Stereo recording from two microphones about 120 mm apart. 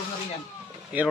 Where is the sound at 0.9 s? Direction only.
15° right (ahead or behind).